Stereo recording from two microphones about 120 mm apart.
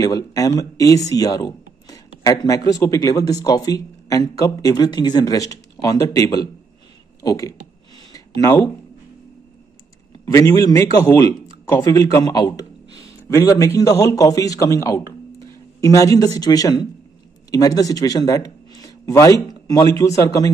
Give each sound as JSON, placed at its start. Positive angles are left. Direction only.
{"t": 0.0, "sound": "speech", "side_deg": 30}
{"t": 8.1, "sound": "a sound", "side_deg": 25}
{"t": 10.2, "sound": "a man's voice", "side_deg": 25}